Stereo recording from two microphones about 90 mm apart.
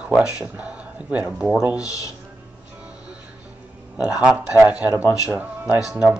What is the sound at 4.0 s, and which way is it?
Speech, 10° right (ahead or behind).